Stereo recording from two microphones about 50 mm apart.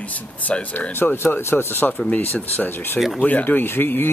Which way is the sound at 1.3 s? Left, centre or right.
Left.